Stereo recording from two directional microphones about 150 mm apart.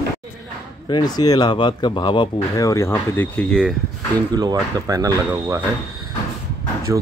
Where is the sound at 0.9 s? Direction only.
30° left (ahead or behind); by 3.7 s 5° left (ahead or behind).